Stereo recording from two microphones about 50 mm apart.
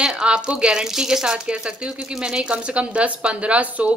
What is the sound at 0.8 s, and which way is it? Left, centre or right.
A woman's voice, centre.